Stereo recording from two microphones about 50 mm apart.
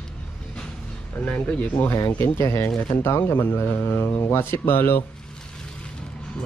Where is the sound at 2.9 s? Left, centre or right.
Left.